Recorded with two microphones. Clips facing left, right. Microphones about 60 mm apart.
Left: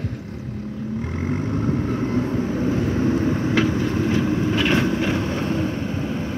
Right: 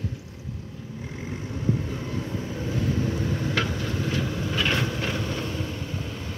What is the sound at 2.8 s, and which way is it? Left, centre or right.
Vehicle, left.